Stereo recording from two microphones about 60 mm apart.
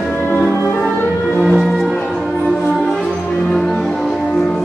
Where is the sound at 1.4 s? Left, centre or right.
Centre.